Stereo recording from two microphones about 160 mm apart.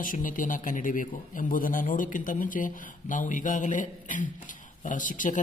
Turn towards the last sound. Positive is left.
turn(degrees=55)  # may be behind; listen again after turning